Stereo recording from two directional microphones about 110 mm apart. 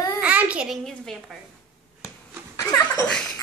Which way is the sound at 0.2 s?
10° right (ahead or behind).